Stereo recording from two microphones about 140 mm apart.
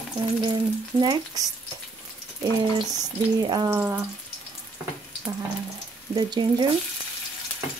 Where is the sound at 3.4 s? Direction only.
35° right (ahead or behind).